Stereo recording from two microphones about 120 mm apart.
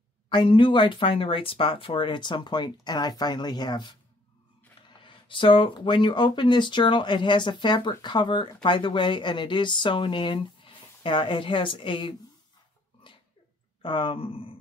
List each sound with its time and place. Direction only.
0.3 s speech: 45° left (ahead or behind)
13.0 s a sound: 45° left (ahead or behind)
13.8 s speech: 45° left (ahead or behind)